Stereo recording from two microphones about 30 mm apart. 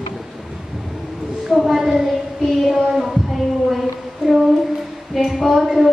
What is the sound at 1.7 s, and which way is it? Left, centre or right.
Child singing, centre.